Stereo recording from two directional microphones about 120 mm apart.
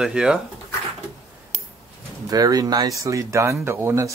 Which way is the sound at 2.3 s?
30° right (ahead or behind).